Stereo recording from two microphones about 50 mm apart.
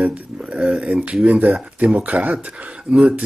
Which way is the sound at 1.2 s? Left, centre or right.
Right.